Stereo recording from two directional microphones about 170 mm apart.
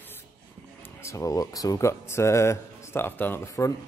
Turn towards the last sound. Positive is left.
turn(degrees=20)  # may be behind; listen again after turning